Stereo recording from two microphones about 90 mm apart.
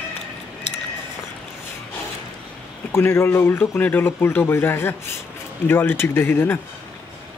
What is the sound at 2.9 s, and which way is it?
A man's voice, 25° left (ahead or behind).